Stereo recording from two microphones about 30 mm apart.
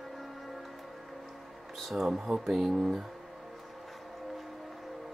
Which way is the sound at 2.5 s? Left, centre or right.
Right.